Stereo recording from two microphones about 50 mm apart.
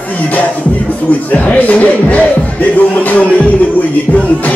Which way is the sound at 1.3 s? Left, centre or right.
Left.